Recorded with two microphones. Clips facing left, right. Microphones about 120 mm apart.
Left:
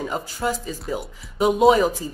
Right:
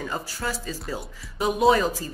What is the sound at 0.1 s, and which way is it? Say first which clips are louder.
Speech: left 5 dB; 20° left (ahead or behind).